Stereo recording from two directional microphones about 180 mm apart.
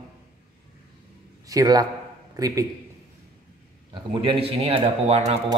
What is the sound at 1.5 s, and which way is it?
A man's voice, 20° right (ahead or behind).